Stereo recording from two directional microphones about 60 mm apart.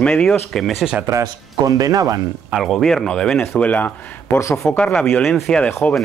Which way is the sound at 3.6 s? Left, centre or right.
Left.